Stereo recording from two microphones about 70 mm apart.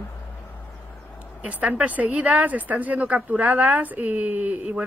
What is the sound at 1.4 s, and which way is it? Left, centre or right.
Speech, centre.